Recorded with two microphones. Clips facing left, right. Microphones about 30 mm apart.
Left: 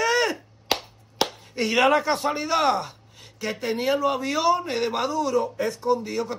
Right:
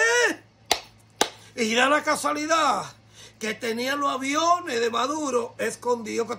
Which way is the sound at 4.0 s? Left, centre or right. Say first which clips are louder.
Left 1 dB; left.